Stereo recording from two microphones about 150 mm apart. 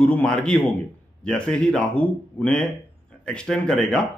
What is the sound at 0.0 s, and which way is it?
Speech, 5° left (ahead or behind).